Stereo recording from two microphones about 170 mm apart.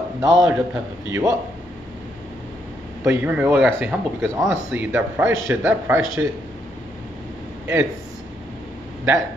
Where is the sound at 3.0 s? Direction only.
10° right (ahead or behind).